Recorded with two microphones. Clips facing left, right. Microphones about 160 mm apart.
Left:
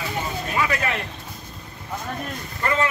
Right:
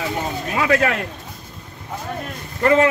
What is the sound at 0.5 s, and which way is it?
Speech, 70° right (ahead or behind).